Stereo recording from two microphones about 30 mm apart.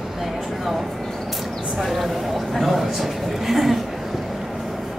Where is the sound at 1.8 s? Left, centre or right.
Centre.